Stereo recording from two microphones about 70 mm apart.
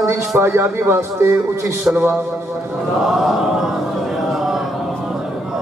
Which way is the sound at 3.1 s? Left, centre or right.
Centre.